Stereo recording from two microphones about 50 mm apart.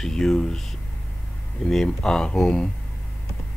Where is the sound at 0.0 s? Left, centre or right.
Centre.